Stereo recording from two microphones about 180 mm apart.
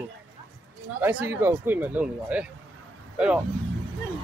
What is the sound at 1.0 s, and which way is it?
Speech, 10° right (ahead or behind).